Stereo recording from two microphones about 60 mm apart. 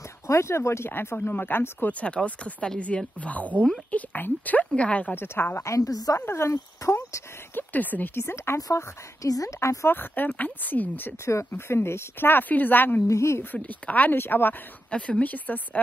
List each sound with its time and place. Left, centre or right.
0.3 s speech: left
1.9 s speech: left
5.1 s speech: left
5.6 s a woman's voice: left
6.1 s speech: left
7.5 s speech: left
8.7 s speech: left
9.8 s speech: left
11.5 s speech: left
13.1 s speech: left
13.6 s speech: left
14.9 s speech: centre